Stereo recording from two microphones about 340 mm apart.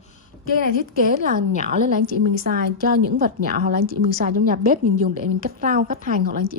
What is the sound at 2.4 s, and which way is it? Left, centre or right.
A woman's voice, right.